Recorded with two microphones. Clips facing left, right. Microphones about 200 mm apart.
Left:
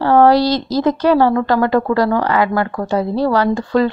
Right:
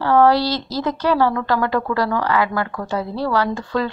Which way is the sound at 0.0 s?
45° left (ahead or behind).